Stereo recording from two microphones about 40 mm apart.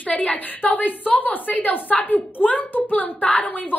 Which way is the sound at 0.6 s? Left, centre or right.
Left.